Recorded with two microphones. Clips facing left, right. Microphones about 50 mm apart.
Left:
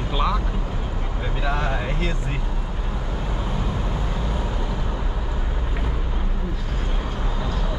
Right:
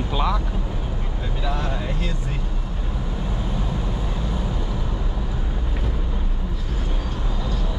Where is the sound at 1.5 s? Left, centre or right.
Left.